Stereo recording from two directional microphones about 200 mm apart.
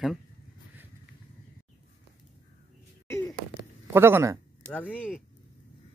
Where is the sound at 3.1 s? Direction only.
15° left (ahead or behind).